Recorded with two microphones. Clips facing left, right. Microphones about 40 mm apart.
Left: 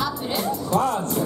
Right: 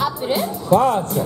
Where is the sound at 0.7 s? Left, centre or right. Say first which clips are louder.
Right 8 dB; right.